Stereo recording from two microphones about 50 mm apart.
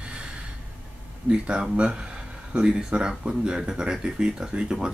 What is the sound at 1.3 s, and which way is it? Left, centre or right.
Speech, right.